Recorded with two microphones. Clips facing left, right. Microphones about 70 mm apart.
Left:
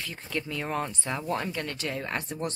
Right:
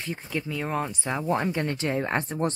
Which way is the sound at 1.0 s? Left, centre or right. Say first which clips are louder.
Right 4 dB; centre.